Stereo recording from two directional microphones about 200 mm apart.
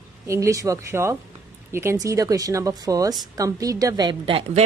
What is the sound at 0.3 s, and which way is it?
A woman's voice, 15° right (ahead or behind).